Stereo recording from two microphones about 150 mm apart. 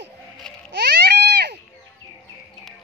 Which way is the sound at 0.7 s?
90° right.